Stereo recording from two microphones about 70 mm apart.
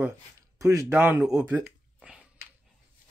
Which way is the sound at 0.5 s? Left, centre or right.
Right.